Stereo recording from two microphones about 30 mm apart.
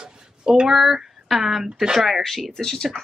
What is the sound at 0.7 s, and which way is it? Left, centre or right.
Speech, centre.